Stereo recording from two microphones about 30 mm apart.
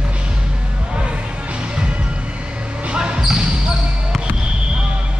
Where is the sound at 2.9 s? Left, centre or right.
Right.